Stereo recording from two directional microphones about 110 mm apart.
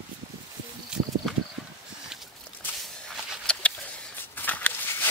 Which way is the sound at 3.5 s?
10° left (ahead or behind).